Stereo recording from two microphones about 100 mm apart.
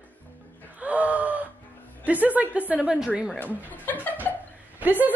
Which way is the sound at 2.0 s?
15° right (ahead or behind).